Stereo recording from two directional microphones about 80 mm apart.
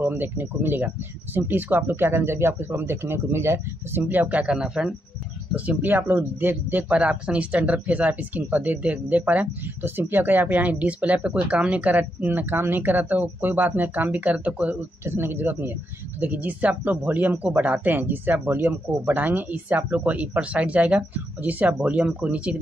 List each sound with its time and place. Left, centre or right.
0.0 s speech: right; by 4.9 s centre
5.5 s speech: right